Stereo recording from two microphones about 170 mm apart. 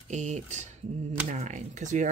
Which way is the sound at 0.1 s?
45° right (ahead or behind).